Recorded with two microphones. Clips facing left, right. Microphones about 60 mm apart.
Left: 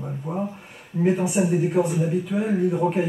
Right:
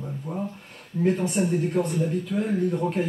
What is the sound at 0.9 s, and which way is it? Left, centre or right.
A man's voice, centre.